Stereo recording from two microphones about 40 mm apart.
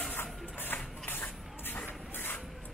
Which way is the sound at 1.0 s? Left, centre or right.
Left.